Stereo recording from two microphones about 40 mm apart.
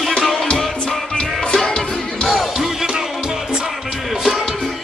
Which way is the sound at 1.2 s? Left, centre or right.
Left.